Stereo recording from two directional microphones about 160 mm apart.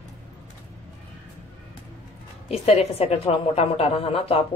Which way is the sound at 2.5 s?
40° left (ahead or behind).